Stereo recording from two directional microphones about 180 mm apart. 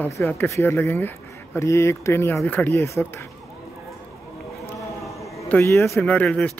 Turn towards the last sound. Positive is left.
turn(degrees=5)  # may be behind; listen again after turning